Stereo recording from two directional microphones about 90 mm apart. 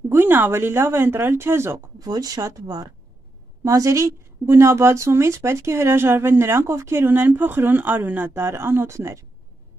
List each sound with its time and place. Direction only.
0.1 s speech: 25° right (ahead or behind)
2.0 s speech: 45° right (ahead or behind)